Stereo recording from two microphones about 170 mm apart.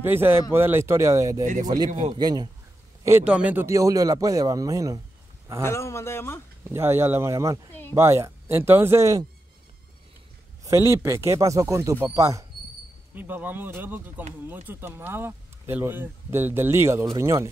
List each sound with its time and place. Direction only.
0.0 s speech: 15° right (ahead or behind)
1.4 s speech: 45° right (ahead or behind)
2.1 s a man's voice: 25° right (ahead or behind)
5.6 s speech: 15° left (ahead or behind)
6.6 s speech: 15° right (ahead or behind)
10.6 s speech: 15° right (ahead or behind)